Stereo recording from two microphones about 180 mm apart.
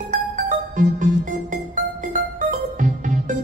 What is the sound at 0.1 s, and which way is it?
Music, 45° right (ahead or behind).